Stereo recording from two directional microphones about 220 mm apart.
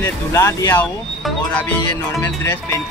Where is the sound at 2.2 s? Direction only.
10° left (ahead or behind).